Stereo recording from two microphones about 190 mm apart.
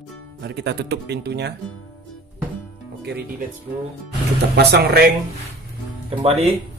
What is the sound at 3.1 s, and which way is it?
Speech, 60° right (ahead or behind).